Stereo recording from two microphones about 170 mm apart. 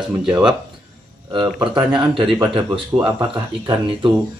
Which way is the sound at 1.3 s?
30° right (ahead or behind).